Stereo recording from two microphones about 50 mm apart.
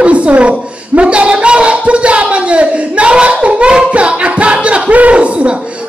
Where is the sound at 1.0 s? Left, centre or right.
Right.